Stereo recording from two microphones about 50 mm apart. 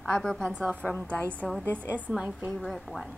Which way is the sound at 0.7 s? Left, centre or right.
Left.